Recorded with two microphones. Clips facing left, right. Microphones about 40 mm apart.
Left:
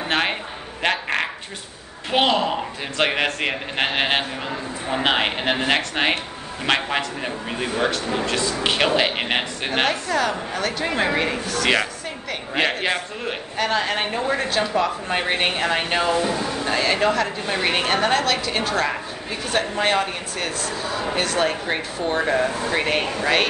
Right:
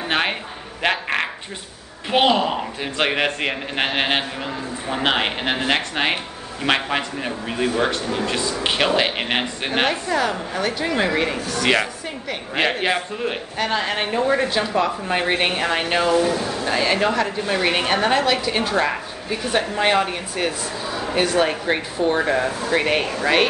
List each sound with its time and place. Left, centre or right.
0.1 s a sound: centre
2.0 s a woman's voice: centre
16.1 s speech: left
16.6 s a woman's voice: centre